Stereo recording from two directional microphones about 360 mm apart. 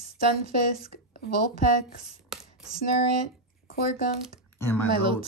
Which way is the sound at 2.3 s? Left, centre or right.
Centre.